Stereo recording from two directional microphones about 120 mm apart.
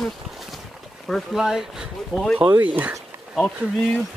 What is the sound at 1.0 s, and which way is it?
Speech, centre (ahead or behind).